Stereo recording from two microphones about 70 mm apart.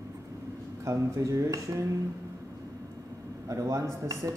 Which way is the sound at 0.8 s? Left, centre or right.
Right.